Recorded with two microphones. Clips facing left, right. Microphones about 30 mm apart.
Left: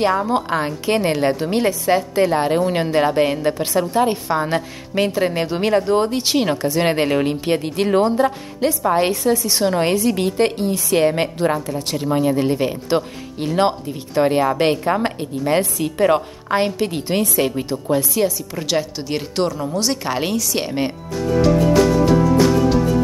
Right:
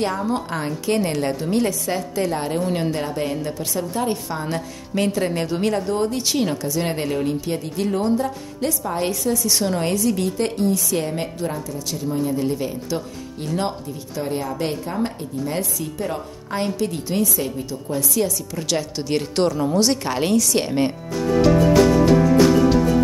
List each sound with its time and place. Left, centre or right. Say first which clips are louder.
0.0 s a woman's voice: left 5 dB; left
5.0 s a woman's voice: left 3 dB; centre; by 8.1 s left
8.5 s a woman's voice: left 6 dB; left
9.8 s a woman's voice: left 3 dB; left
12.0 s speech: left 4 dB; left
16.5 s a woman's voice: left 4 dB; left
18.1 s a woman's voice: left 3 dB; left
18.9 s a woman's voice: right 1 dB; centre
22.0 s music: even; centre